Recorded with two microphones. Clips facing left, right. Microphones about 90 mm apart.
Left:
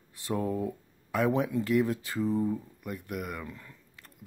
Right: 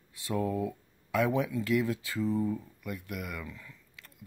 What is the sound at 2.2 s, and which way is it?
Speech, 20° left (ahead or behind).